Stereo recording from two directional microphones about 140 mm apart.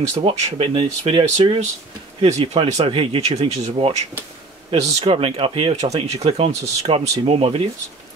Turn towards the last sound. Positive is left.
turn(degrees=-40)  # may be behind; listen again after turning